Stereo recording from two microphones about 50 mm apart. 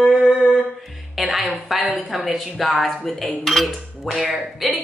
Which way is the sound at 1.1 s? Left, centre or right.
Centre.